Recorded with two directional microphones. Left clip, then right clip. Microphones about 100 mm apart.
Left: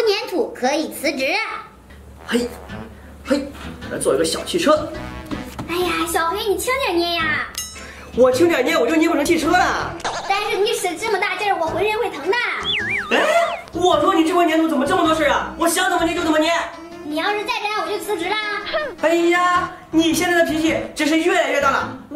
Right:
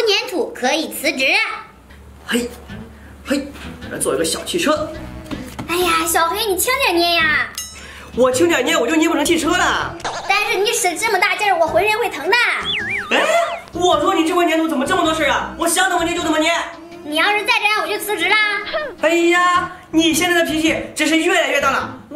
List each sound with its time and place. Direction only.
0.0 s a sound: centre (ahead or behind)
2.3 s speech: centre (ahead or behind)
5.7 s a woman's voice: 40° right (ahead or behind)
8.2 s speech: 5° right (ahead or behind)
10.3 s a woman's voice: 30° right (ahead or behind)
12.6 s speech: centre (ahead or behind)
18.6 s speech: centre (ahead or behind)